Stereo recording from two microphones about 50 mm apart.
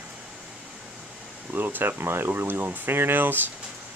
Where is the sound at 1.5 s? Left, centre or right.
Right.